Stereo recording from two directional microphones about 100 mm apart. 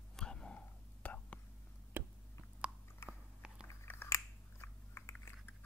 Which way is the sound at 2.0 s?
20° right (ahead or behind).